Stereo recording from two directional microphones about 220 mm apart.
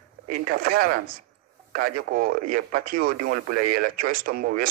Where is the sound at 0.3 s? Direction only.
40° right (ahead or behind).